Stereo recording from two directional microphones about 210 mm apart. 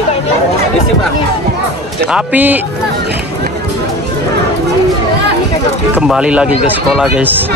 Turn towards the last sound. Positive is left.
turn(degrees=-5)  # may be behind; listen again after turning